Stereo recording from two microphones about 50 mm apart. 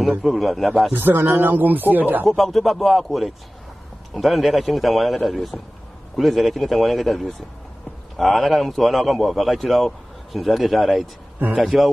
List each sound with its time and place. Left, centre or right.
0.2 s a man's voice: centre
0.9 s speech: right
2.2 s a man's voice: centre